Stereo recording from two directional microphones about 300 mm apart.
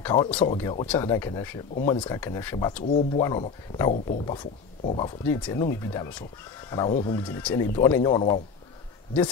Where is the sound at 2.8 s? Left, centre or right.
Left.